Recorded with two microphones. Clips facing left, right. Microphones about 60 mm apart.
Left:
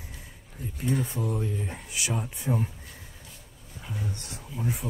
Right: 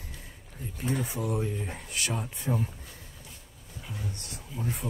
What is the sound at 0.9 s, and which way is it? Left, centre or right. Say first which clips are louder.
Speech: even; centre.